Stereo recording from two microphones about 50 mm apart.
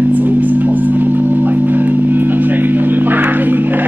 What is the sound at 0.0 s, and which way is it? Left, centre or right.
Music, right.